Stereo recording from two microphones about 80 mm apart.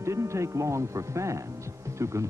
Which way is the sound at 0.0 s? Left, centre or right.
Right.